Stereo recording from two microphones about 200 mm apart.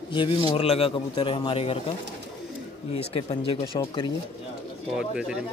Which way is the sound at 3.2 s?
25° left (ahead or behind).